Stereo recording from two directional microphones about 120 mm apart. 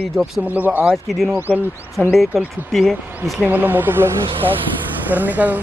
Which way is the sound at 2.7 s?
Centre (ahead or behind).